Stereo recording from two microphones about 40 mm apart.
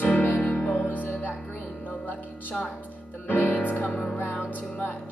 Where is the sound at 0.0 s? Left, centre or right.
Left.